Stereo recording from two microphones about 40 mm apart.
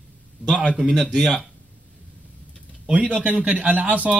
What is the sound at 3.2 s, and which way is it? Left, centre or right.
Speech, right.